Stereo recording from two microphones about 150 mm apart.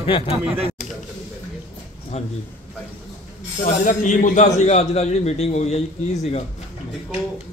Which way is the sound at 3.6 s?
60° left (ahead or behind).